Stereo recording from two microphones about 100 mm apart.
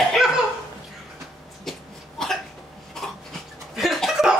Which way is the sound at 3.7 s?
Centre (ahead or behind).